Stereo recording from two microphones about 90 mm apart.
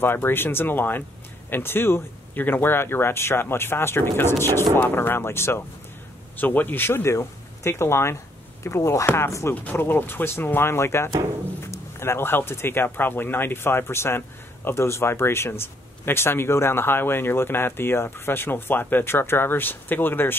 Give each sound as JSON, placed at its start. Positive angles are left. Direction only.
{"t": 0.0, "sound": "speech", "side_deg": 25}